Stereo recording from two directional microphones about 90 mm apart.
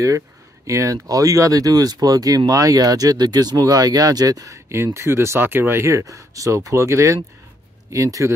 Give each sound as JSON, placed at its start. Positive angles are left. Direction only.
{"t": 0.7, "sound": "speech", "side_deg": -35}
{"t": 4.6, "sound": "speech", "side_deg": -30}